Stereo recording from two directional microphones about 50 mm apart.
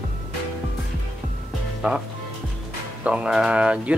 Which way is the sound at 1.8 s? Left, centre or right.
Right.